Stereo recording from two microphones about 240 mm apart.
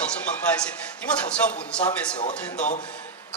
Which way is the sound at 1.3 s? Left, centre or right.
Centre.